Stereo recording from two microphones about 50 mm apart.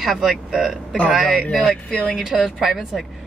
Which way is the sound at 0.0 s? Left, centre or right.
Centre.